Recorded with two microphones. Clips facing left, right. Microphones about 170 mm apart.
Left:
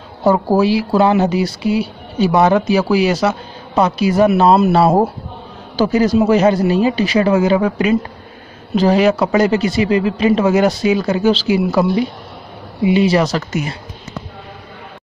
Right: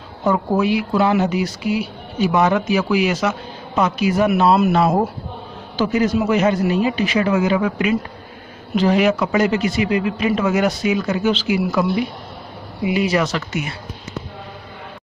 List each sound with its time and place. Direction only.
0.2 s speech: 35° left (ahead or behind)